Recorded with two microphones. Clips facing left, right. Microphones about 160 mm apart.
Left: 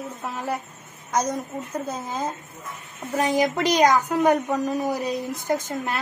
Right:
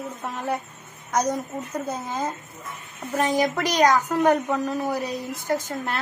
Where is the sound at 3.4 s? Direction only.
20° left (ahead or behind).